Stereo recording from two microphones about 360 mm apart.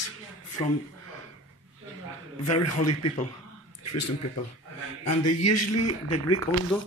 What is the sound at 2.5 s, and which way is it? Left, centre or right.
Speech, left.